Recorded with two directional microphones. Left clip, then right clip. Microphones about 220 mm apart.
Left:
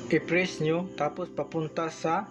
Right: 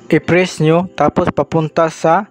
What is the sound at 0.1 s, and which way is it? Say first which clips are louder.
Speech: right 13 dB; 50° right (ahead or behind).